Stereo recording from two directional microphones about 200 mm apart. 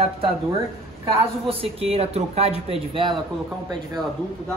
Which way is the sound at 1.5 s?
30° right (ahead or behind).